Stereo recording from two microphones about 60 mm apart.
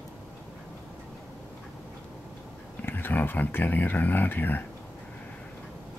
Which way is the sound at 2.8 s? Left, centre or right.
Left.